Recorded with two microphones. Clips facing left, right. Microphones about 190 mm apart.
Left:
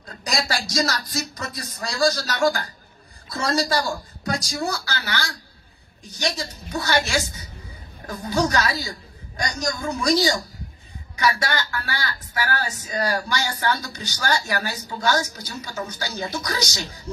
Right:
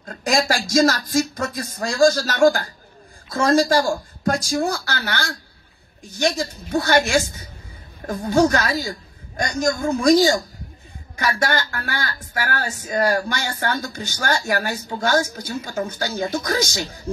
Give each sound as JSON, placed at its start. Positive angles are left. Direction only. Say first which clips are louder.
{"t": 0.2, "sound": "speech", "louder": "right 6 dB", "side_deg": -50}